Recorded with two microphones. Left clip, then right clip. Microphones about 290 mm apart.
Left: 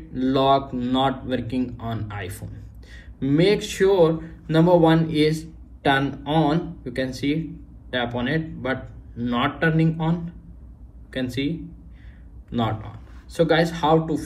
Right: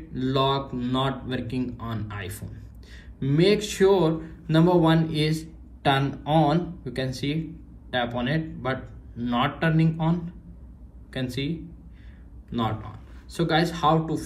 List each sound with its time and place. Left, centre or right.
0.1 s speech: centre
13.3 s speech: centre